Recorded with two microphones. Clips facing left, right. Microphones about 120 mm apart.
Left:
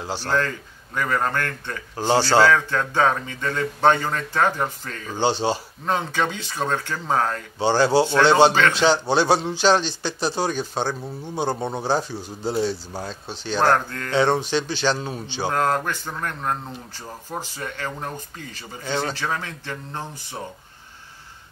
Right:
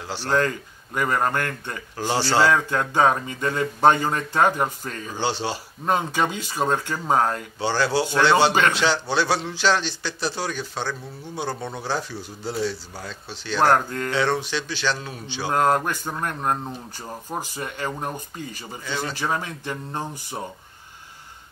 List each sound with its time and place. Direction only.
0.2 s speech: 15° right (ahead or behind)
5.2 s speech: 20° left (ahead or behind)
5.9 s speech: 10° right (ahead or behind)
7.5 s speech: 25° left (ahead or behind)
10.6 s speech: 35° left (ahead or behind)
10.9 s speech: 25° left (ahead or behind)
13.6 s speech: 10° right (ahead or behind)
14.1 s speech: 25° left (ahead or behind)
15.5 s speech: 15° right (ahead or behind)